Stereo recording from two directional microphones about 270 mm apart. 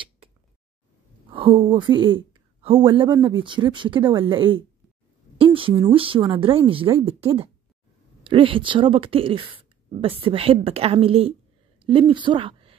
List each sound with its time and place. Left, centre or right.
1.3 s a woman's voice: centre